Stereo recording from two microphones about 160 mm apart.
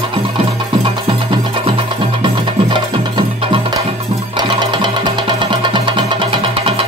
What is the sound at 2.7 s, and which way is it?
Music, 30° right (ahead or behind).